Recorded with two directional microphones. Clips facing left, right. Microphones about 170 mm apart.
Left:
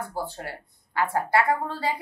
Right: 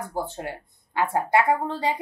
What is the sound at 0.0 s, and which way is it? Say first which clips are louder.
Speech: right 2 dB; 20° right (ahead or behind).